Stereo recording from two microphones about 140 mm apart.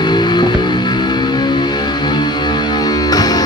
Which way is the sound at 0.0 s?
30° left (ahead or behind).